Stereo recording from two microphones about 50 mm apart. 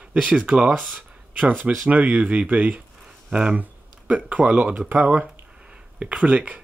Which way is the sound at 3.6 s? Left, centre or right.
Right.